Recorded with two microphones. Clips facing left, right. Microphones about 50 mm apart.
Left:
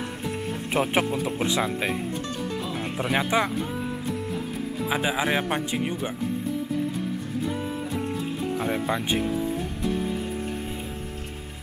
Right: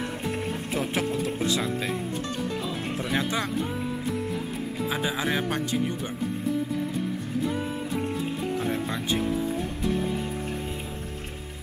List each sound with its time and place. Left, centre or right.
0.7 s speech: left
1.2 s speech: left
3.0 s speech: centre
4.8 s speech: centre
8.5 s speech: centre